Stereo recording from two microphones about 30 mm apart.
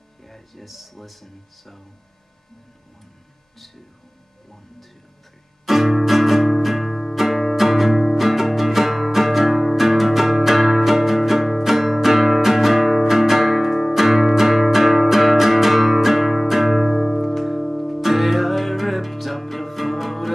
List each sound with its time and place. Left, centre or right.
0.2 s speech: centre
0.7 s speech: centre
5.7 s music: centre
18.0 s music: centre